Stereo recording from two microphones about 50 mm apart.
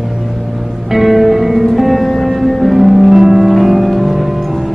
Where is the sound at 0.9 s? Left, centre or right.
Centre.